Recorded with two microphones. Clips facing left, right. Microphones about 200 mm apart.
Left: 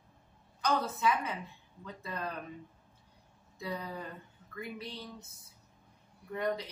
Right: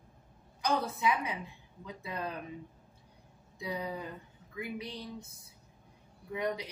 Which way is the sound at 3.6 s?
10° right (ahead or behind).